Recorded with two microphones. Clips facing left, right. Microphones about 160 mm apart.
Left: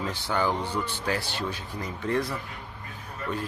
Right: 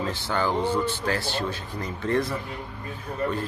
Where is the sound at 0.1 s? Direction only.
15° left (ahead or behind).